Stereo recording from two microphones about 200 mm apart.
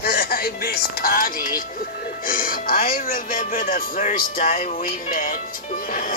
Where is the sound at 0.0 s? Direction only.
50° left (ahead or behind).